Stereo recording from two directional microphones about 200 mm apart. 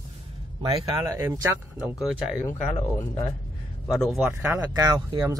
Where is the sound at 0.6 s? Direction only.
15° right (ahead or behind).